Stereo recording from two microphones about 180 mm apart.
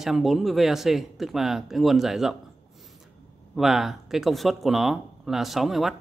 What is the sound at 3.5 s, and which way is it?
Speech, centre (ahead or behind).